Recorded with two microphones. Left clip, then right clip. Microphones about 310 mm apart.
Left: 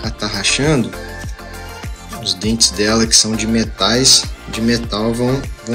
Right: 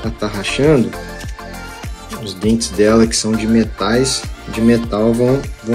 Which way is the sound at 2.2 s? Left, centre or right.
Centre.